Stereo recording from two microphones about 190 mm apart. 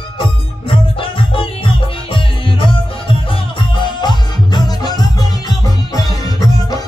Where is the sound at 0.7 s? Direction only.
25° left (ahead or behind).